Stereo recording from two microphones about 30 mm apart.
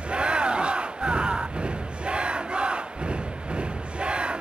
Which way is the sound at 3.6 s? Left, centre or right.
Right.